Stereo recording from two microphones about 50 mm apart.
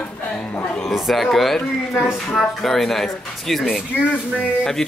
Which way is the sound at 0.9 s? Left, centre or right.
Centre.